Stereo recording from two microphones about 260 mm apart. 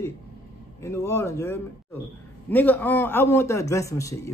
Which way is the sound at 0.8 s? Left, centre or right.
Centre.